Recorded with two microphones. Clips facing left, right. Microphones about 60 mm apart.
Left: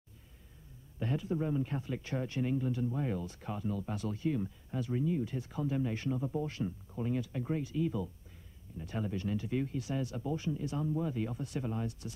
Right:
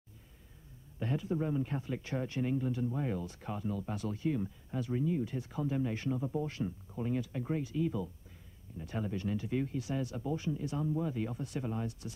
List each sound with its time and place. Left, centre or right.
0.9 s speech: centre